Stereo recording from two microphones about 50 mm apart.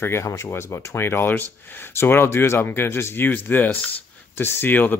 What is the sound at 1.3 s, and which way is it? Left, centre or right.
Speech, left.